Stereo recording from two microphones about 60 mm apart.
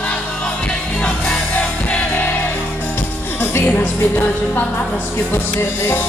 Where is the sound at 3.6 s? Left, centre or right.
Left.